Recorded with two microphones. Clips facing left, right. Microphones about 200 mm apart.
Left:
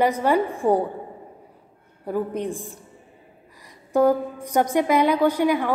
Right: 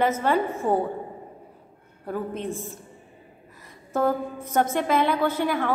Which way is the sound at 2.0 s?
15° left (ahead or behind).